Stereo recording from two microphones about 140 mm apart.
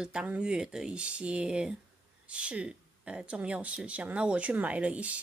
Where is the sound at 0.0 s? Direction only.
5° right (ahead or behind).